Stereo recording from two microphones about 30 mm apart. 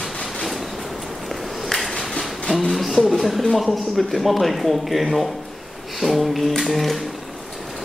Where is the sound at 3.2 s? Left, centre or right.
Centre.